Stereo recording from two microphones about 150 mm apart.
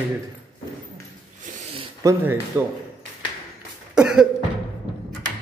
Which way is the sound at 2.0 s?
15° right (ahead or behind).